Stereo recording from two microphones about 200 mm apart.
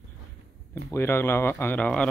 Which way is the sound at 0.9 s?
10° left (ahead or behind).